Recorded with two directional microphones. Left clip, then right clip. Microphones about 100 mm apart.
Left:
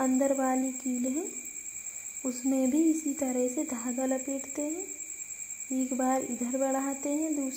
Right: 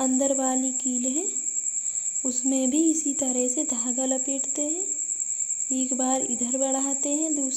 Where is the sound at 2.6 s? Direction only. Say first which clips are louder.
Right 3 dB; centre (ahead or behind).